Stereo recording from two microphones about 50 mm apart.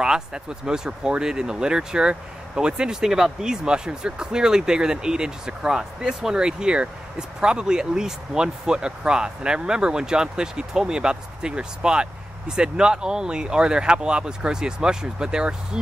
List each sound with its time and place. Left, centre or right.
0.0 s speech: centre